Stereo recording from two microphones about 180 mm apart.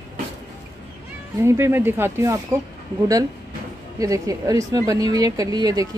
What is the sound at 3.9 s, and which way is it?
A woman's voice, 20° right (ahead or behind).